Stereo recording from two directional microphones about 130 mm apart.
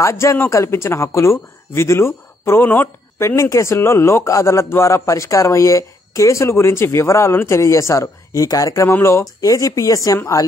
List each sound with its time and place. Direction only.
0.0 s speech: 20° left (ahead or behind)